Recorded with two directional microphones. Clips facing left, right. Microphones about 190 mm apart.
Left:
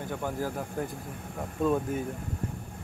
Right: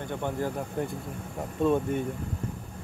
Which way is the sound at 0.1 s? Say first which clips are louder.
Right 2 dB; 5° left (ahead or behind).